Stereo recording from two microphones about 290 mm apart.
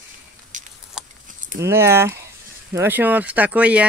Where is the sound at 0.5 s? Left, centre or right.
Right.